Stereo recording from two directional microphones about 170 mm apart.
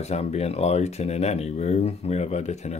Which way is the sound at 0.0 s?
40° left (ahead or behind).